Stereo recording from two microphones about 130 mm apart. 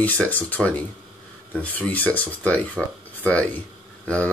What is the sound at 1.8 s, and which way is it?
Speech, 15° left (ahead or behind).